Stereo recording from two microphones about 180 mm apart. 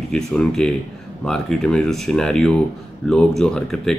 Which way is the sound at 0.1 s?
5° left (ahead or behind).